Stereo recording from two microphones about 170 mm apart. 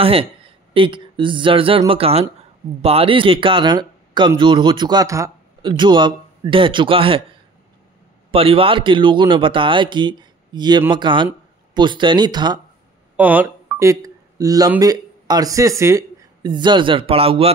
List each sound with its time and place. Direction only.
0.0 s a man's voice: 35° right (ahead or behind)
8.3 s a man's voice: 35° right (ahead or behind)
13.1 s a sound: 10° right (ahead or behind)
14.8 s speech: 20° right (ahead or behind)